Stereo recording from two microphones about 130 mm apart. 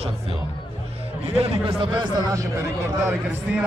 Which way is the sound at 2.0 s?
30° right (ahead or behind).